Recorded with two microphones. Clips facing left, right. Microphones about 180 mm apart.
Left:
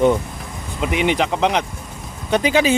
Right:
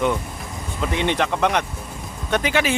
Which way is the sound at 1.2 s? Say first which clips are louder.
Left 2 dB; 25° left (ahead or behind).